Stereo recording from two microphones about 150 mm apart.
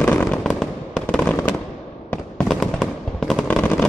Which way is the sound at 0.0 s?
10° left (ahead or behind).